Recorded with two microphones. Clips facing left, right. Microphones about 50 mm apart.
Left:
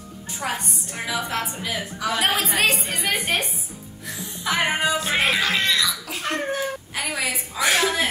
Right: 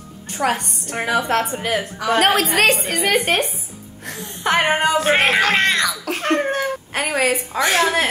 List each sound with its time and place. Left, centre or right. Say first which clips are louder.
0.3 s a woman's voice: right 7 dB; right